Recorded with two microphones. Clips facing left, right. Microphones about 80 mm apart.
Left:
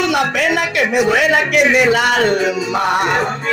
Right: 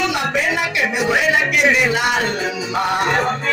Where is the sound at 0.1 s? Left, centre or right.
Left.